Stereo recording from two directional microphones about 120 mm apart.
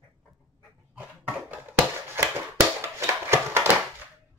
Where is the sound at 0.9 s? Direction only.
15° right (ahead or behind).